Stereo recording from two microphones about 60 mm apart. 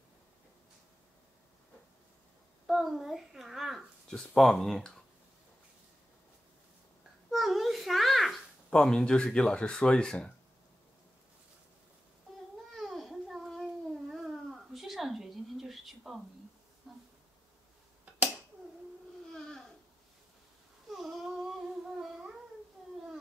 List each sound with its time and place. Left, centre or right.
2.6 s a child's voice: centre
7.2 s babbling: centre
8.6 s speech: centre
12.7 s a sound: centre
19.3 s a sound: centre
20.9 s babbling: centre